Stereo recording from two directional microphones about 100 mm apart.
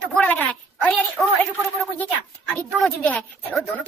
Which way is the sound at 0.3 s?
15° left (ahead or behind).